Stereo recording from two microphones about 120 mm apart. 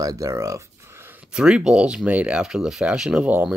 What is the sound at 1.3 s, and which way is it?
Speech, 5° right (ahead or behind).